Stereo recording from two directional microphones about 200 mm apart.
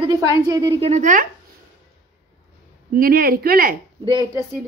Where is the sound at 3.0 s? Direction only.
45° right (ahead or behind).